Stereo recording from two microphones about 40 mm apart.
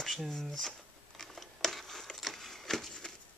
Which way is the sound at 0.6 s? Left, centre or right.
Centre.